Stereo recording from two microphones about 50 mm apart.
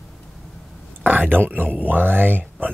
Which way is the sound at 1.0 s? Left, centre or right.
Right.